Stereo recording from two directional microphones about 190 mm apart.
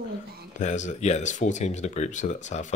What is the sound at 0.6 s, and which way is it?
Speech, 40° left (ahead or behind).